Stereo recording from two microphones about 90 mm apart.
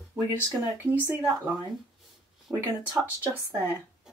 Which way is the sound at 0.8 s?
20° right (ahead or behind).